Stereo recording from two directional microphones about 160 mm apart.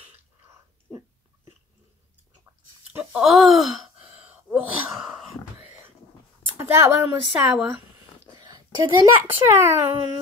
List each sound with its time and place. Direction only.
2.9 s speech: 10° right (ahead or behind)
4.1 s a sound: 10° right (ahead or behind)
6.6 s speech: 15° right (ahead or behind)
8.3 s a child's voice: 25° right (ahead or behind)